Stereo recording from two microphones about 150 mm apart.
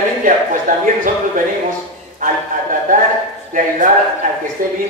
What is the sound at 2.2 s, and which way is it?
A man's voice, 60° right (ahead or behind).